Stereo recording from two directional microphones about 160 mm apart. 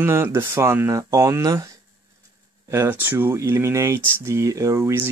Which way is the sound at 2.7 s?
15° right (ahead or behind).